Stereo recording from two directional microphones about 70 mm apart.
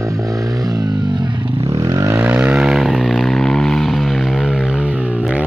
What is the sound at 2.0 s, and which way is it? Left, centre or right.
Vehicle, right.